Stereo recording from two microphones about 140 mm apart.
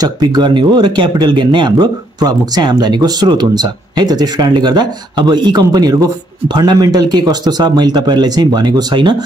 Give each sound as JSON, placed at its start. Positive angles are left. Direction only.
{"t": 0.0, "sound": "speech", "side_deg": -30}